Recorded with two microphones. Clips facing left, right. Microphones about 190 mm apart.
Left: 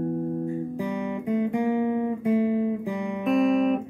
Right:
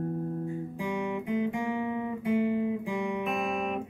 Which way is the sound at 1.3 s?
45° left (ahead or behind).